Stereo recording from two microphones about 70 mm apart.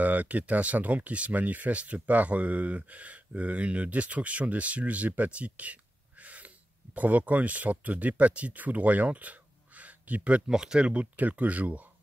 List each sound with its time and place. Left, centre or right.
0.0 s speech: right